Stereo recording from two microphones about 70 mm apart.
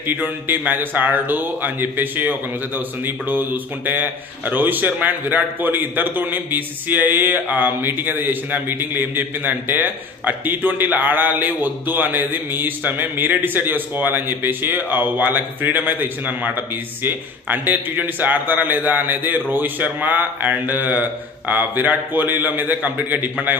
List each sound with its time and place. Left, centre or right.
0.0 s a man's voice: right